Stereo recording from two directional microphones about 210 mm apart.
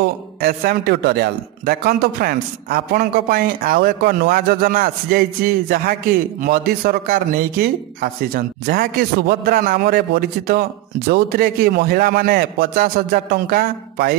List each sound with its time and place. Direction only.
0.0 s a man's voice: 45° right (ahead or behind)